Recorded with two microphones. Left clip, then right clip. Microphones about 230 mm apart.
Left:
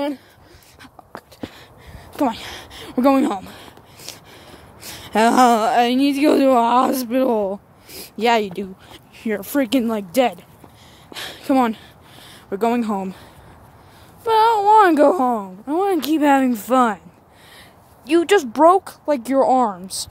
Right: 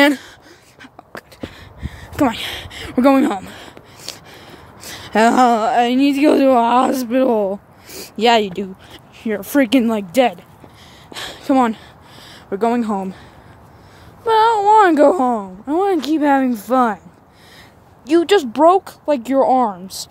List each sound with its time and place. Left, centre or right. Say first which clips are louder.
0.0 s speech: right 11 dB; right
1.4 s a sound: right 3 dB; centre
9.5 s speech: right 5 dB; centre
11.1 s a sound: right 2 dB; centre
14.2 s speech: right 2 dB; centre
18.0 s speech: right 2 dB; centre